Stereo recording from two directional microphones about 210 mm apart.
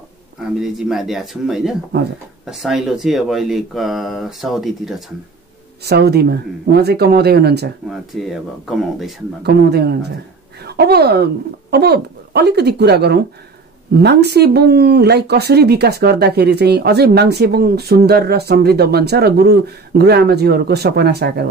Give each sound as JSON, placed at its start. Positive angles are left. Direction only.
{"t": 0.4, "sound": "speech", "side_deg": 0}
{"t": 5.9, "sound": "speech", "side_deg": -50}
{"t": 7.9, "sound": "speech", "side_deg": 0}
{"t": 9.4, "sound": "speech", "side_deg": -50}